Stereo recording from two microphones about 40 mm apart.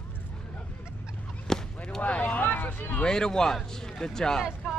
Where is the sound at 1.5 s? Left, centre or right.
Centre.